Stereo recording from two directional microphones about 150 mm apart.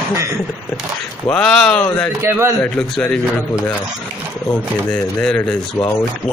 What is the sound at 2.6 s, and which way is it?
Speech, 5° left (ahead or behind).